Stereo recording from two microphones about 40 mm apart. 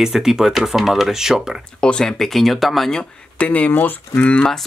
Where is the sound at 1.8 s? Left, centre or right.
Centre.